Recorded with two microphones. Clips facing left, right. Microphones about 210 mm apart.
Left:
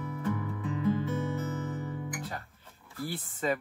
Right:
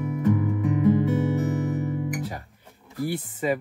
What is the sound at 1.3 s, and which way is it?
Guitar, 20° right (ahead or behind).